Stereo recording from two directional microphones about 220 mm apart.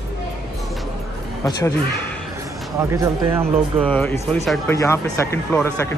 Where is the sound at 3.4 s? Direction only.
5° left (ahead or behind).